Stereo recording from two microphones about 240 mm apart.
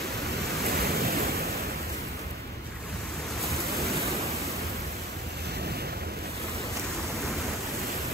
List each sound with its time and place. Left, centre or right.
0.7 s waves: right